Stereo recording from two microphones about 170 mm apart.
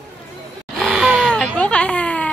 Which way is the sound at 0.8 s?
5° right (ahead or behind).